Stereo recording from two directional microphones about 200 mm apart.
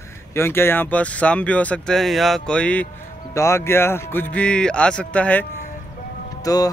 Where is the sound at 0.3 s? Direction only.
10° left (ahead or behind).